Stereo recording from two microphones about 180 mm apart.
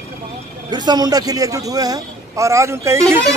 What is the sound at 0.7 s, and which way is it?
A man's voice, 25° right (ahead or behind).